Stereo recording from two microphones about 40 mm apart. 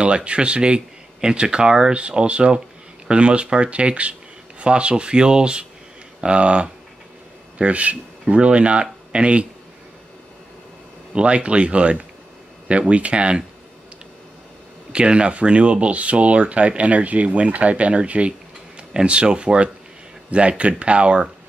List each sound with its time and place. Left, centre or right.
0.0 s speech: right
2.0 s speech: right
11.1 s speech: right
14.9 s speech: right